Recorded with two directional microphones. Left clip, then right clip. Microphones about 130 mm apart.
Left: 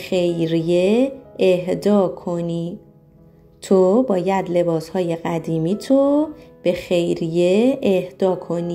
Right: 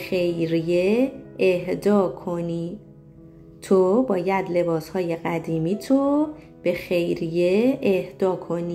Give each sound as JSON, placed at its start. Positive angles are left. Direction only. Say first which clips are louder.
{"t": 0.0, "sound": "speech", "louder": "left 4 dB", "side_deg": 40}